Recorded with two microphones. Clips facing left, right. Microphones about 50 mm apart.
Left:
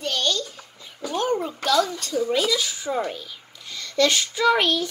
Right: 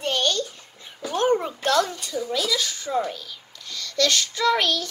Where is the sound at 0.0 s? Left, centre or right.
Right.